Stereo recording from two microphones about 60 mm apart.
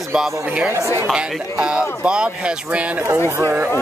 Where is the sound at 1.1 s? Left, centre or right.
Centre.